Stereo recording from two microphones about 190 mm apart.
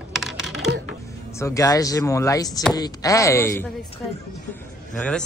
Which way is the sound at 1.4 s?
15° left (ahead or behind).